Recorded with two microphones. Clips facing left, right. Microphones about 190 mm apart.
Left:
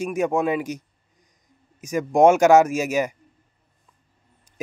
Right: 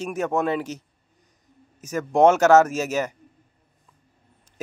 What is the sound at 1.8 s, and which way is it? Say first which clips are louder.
Speech: left 1 dB; 10° left (ahead or behind).